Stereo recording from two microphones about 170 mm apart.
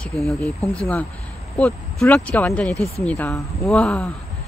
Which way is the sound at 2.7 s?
20° right (ahead or behind).